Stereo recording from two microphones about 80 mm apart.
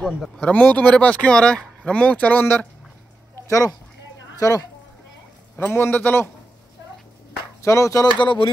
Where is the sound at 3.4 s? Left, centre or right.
Left.